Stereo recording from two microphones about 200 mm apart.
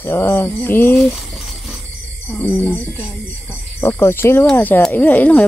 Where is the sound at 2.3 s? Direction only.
10° left (ahead or behind).